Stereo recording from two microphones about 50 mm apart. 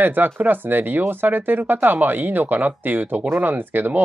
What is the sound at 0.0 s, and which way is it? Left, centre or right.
Speech, right.